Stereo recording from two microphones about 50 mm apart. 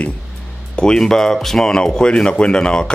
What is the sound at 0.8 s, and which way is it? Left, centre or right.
Speech, centre.